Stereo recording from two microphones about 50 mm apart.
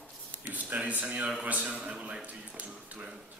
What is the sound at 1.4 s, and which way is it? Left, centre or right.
Speech, right.